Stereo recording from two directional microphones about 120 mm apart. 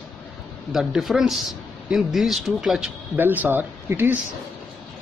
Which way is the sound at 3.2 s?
15° right (ahead or behind).